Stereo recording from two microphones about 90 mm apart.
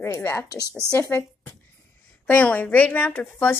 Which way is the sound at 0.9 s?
30° left (ahead or behind).